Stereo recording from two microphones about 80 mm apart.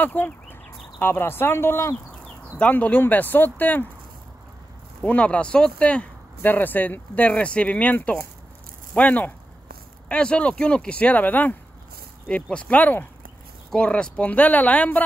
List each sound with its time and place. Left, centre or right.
0.0 s speech: left
2.6 s speech: centre
5.0 s speech: centre